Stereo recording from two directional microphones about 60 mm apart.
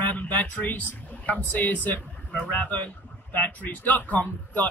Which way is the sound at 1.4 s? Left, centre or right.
Left.